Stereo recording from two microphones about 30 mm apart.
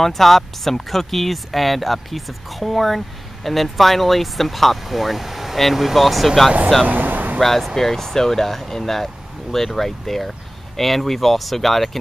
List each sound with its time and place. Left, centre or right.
0.0 s speech: centre
6.9 s vehicle: right
7.3 s speech: centre